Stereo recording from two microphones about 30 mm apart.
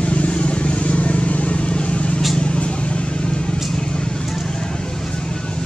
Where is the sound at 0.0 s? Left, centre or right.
Left.